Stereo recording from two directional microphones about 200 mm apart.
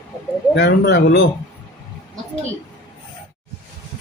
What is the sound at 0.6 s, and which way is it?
Speech, 60° left (ahead or behind).